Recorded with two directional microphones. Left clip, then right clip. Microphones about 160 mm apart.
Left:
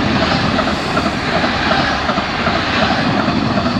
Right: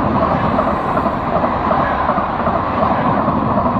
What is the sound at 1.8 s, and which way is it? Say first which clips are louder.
Vehicle: right 1 dB; 5° left (ahead or behind).